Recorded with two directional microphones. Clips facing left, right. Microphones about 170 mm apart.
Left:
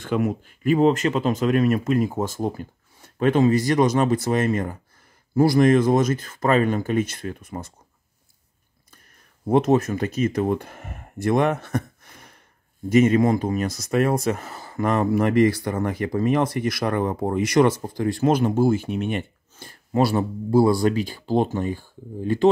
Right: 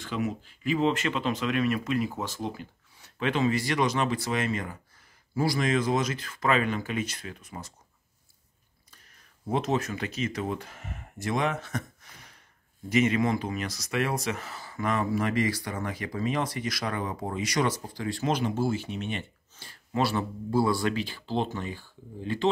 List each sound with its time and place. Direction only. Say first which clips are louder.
0.0 s speech: left 8 dB; 55° left (ahead or behind)
9.5 s speech: left 9 dB; 50° left (ahead or behind)